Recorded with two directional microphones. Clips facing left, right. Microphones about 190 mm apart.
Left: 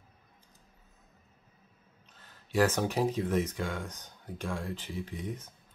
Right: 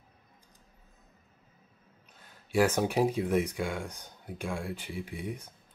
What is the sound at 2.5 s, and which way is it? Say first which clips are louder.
Speech: right 2 dB; 10° right (ahead or behind).